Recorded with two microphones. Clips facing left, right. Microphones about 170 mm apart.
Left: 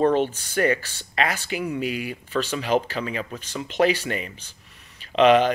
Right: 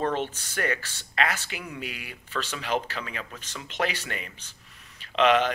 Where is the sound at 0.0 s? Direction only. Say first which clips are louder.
Left 8 dB; 35° left (ahead or behind).